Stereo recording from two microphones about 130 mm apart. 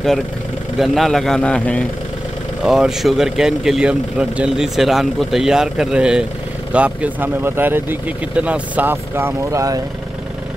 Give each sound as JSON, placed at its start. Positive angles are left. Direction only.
{"t": 0.7, "sound": "speech", "side_deg": 0}
{"t": 2.6, "sound": "speech", "side_deg": -5}